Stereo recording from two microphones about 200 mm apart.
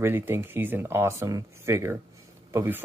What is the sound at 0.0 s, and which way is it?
Speech, 10° right (ahead or behind).